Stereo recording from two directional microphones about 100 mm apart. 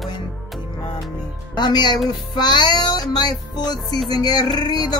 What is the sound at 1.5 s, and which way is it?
Speech, 45° left (ahead or behind).